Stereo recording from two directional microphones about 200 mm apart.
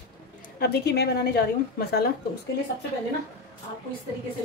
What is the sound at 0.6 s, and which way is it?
Speech, 55° left (ahead or behind).